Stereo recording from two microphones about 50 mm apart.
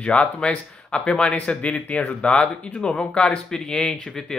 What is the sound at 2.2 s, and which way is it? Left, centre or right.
A man's voice, centre.